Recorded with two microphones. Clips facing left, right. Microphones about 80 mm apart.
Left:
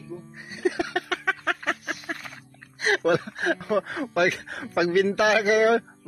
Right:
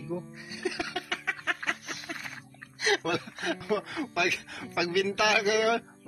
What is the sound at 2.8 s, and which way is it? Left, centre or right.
Speech, left.